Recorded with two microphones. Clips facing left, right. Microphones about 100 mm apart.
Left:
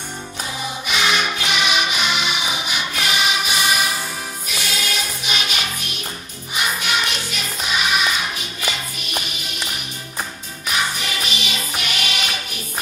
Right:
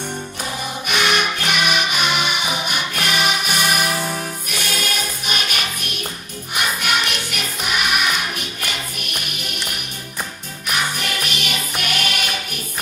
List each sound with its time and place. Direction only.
0.8 s music: 55° right (ahead or behind)
6.5 s music: 60° right (ahead or behind)
10.7 s music: 55° right (ahead or behind)